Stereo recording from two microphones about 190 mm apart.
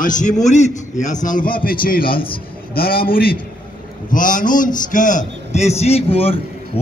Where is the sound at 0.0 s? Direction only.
40° left (ahead or behind).